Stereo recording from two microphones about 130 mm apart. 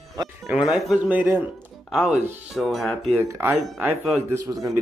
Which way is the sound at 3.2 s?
20° right (ahead or behind).